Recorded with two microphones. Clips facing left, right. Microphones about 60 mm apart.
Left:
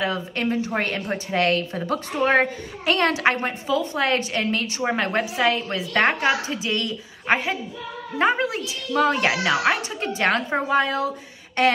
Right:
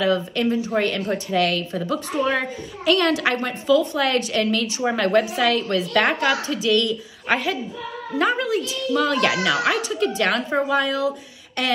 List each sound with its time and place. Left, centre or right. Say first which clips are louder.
0.0 s a woman's voice: right 4 dB; left